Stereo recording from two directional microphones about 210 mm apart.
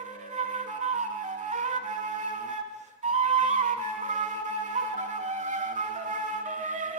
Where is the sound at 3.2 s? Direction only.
35° right (ahead or behind).